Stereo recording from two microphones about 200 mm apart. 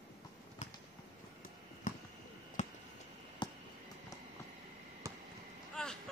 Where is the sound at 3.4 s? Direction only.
20° left (ahead or behind).